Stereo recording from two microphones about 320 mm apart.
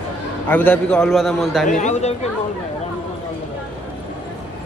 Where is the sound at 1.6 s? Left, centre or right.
Left.